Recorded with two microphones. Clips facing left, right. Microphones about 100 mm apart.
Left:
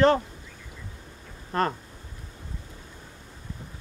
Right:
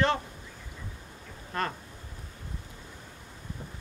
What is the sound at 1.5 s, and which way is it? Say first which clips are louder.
Speech: left 6 dB; 35° left (ahead or behind).